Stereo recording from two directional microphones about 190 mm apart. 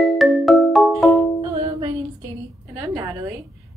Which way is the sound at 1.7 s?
20° right (ahead or behind).